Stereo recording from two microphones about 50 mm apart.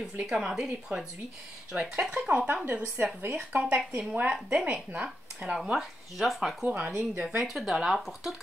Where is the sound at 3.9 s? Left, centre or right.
Right.